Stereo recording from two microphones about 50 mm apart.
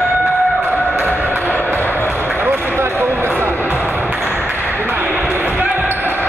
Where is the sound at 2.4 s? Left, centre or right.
Right.